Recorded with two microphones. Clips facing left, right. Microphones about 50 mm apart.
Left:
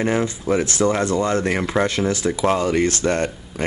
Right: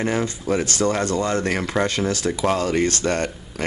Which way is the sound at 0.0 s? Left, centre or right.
Centre.